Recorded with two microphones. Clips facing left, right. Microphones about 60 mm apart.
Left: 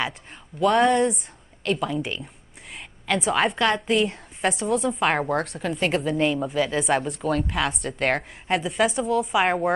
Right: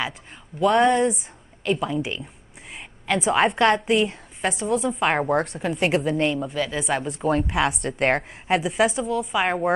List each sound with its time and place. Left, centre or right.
0.6 s a woman's voice: centre
2.7 s whispering: centre
3.7 s a woman's voice: centre
7.2 s a woman's voice: centre